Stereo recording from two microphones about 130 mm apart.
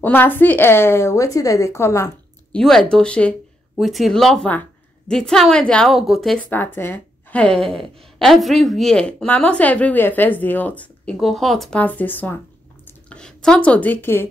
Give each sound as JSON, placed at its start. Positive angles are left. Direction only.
{"t": 0.0, "sound": "speech", "side_deg": 15}
{"t": 2.5, "sound": "a woman's voice", "side_deg": 5}
{"t": 6.5, "sound": "a woman's voice", "side_deg": 15}
{"t": 11.1, "sound": "a woman's voice", "side_deg": 0}
{"t": 11.8, "sound": "a woman's voice", "side_deg": 15}